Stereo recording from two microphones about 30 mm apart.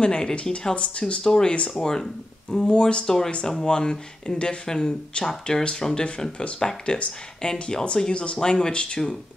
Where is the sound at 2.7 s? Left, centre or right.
Left.